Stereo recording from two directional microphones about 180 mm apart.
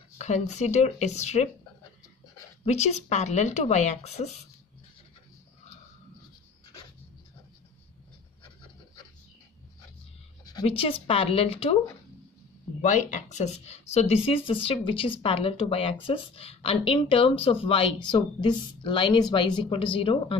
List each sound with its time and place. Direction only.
0.2 s speech: 40° left (ahead or behind)
2.6 s speech: 40° left (ahead or behind)
10.4 s speech: 25° left (ahead or behind)
12.8 s speech: 45° left (ahead or behind)